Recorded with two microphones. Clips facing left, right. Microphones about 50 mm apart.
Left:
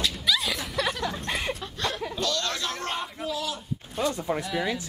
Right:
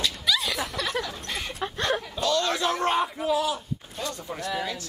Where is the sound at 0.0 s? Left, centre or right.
Centre.